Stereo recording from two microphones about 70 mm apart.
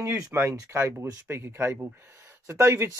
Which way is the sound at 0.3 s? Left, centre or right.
Right.